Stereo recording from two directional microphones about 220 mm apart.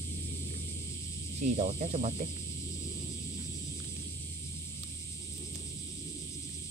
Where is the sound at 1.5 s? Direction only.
30° right (ahead or behind).